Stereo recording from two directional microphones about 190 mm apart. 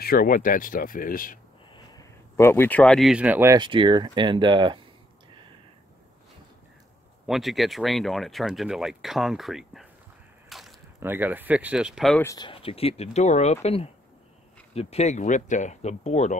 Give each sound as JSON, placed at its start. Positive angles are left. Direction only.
{"t": 0.0, "sound": "speech", "side_deg": 50}
{"t": 1.7, "sound": "speech", "side_deg": 15}
{"t": 3.5, "sound": "speech", "side_deg": -25}
{"t": 7.2, "sound": "speech", "side_deg": 0}
{"t": 10.5, "sound": "a sound", "side_deg": 0}
{"t": 11.0, "sound": "speech", "side_deg": -10}
{"t": 12.2, "sound": "speech", "side_deg": 15}
{"t": 12.4, "sound": "speech", "side_deg": 30}